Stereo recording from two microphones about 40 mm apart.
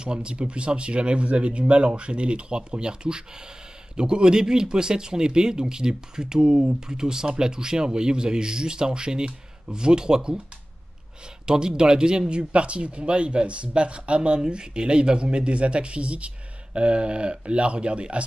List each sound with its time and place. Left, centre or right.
0.0 s speech: right
11.4 s speech: centre